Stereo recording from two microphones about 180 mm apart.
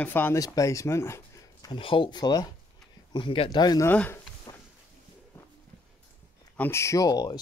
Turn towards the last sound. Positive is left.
turn(degrees=20)  # may be behind; listen again after turning